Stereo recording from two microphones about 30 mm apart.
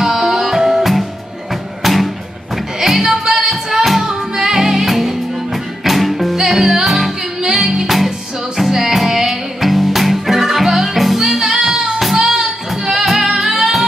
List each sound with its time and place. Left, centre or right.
0.0 s music: centre